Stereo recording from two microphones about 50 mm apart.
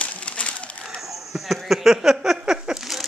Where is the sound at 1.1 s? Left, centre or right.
Centre.